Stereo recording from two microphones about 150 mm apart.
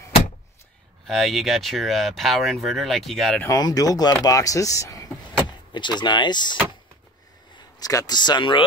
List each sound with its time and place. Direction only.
1.0 s speech: centre (ahead or behind)
3.4 s speech: 25° left (ahead or behind)
7.8 s speech: 25° left (ahead or behind)